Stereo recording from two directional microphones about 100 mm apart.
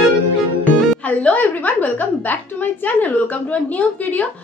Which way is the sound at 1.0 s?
15° left (ahead or behind).